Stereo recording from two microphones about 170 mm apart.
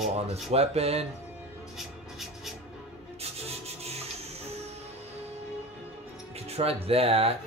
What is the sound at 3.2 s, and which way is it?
Rub, 35° right (ahead or behind).